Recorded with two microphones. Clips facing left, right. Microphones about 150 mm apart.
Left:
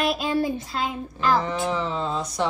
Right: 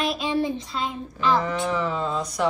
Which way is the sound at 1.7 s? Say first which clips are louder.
Right 1 dB; 30° left (ahead or behind).